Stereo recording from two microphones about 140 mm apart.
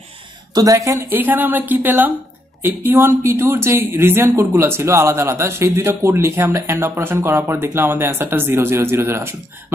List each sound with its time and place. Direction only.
0.6 s a woman's voice: 25° right (ahead or behind)